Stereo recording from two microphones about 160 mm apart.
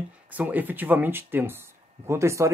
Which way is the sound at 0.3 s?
10° right (ahead or behind).